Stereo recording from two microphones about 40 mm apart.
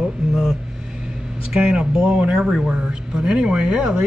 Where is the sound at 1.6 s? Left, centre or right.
Right.